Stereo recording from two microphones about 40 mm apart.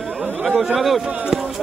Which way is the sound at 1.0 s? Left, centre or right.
Right.